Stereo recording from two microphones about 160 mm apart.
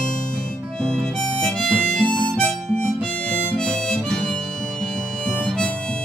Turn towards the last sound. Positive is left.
turn(degrees=5)  # may be behind; listen again after turning